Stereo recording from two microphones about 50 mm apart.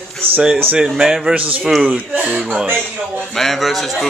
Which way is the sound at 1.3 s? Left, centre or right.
Right.